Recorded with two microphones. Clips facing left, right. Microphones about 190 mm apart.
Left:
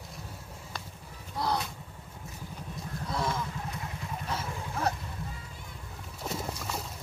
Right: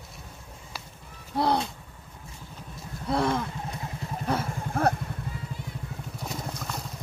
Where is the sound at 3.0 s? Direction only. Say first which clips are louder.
Right 7 dB; 60° right (ahead or behind).